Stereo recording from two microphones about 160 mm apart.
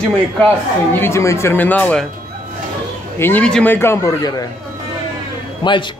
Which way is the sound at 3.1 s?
10° left (ahead or behind).